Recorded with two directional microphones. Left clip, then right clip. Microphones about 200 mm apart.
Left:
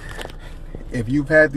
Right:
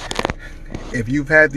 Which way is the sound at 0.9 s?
25° right (ahead or behind).